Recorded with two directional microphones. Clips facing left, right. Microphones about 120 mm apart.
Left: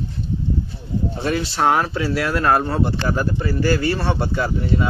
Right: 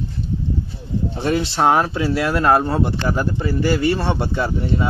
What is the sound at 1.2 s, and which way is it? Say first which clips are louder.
Speech: right 3 dB; 25° right (ahead or behind).